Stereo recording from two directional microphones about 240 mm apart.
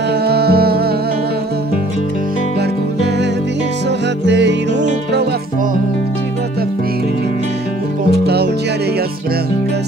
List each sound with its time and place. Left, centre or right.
0.2 s music: right
4.3 s music: right